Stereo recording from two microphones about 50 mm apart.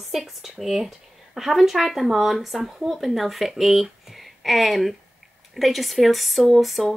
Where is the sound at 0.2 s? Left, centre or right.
Centre.